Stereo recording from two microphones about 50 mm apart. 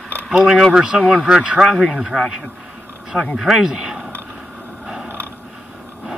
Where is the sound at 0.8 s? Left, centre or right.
Centre.